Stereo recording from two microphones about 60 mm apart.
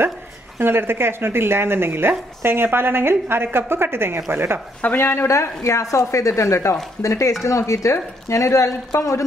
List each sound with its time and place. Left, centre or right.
0.6 s a woman's voice: right
4.9 s speech: left